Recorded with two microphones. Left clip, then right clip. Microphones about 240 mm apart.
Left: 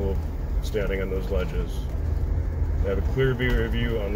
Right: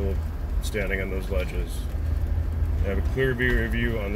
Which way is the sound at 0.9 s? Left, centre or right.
Right.